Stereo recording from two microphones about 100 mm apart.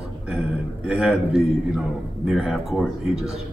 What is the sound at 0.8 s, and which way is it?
A man's voice, 5° right (ahead or behind).